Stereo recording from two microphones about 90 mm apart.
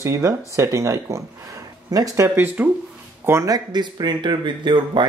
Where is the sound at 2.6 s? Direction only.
20° right (ahead or behind).